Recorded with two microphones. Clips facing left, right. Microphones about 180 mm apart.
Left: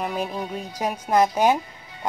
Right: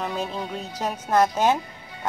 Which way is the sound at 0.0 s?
10° left (ahead or behind).